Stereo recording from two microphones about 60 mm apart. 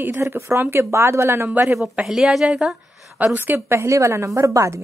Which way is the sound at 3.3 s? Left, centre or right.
Right.